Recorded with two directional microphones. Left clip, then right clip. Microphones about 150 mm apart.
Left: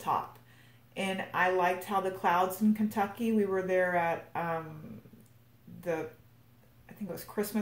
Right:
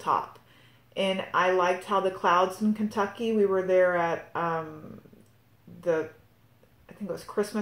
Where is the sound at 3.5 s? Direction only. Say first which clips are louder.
Right 5 dB; 40° right (ahead or behind).